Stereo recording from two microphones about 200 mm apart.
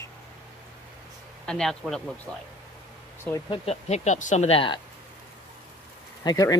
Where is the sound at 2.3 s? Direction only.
10° right (ahead or behind).